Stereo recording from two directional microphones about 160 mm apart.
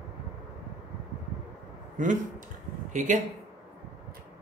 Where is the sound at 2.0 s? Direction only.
55° right (ahead or behind).